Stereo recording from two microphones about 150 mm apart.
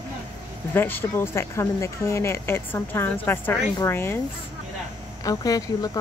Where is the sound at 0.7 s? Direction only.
15° left (ahead or behind).